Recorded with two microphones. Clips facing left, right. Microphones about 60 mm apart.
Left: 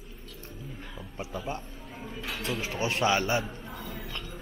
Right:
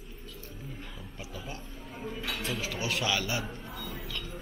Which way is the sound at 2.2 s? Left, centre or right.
Left.